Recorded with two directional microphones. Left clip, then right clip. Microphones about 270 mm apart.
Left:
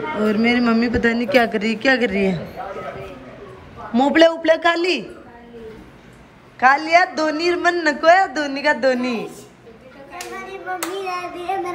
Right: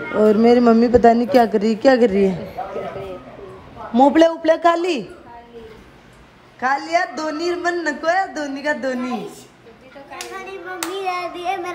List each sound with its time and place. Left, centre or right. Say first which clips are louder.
0.2 s a woman's voice: right 6 dB; centre
3.9 s a woman's voice: right 1 dB; centre
6.6 s a woman's voice: left 5 dB; centre
10.1 s hands: even; centre